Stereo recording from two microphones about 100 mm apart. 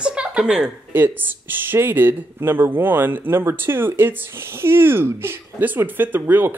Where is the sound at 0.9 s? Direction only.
20° right (ahead or behind).